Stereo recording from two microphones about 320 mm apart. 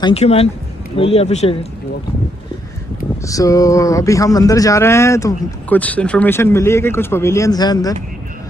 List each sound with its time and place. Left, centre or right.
0.0 s a man's voice: centre
3.3 s speech: centre